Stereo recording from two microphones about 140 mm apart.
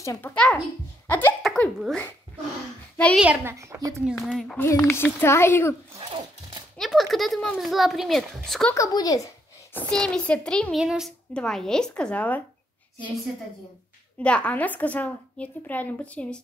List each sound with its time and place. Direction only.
0.0 s a child's voice: 20° left (ahead or behind)
0.3 s a woman's voice: 10° left (ahead or behind)
1.4 s a sound: centre (ahead or behind)
3.2 s a child's voice: 10° right (ahead or behind)
3.5 s a woman's voice: 20° right (ahead or behind)
4.0 s a child's voice: 5° left (ahead or behind)
4.9 s a woman's voice: 15° left (ahead or behind)
5.9 s a sound: 40° right (ahead or behind)
6.8 s a child's voice: centre (ahead or behind)
8.7 s a woman's voice: 25° left (ahead or behind)
9.8 s a woman's voice: 5° left (ahead or behind)
14.2 s a woman's voice: 10° left (ahead or behind)